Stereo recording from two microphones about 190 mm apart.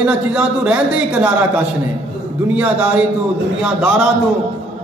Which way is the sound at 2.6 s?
5° right (ahead or behind).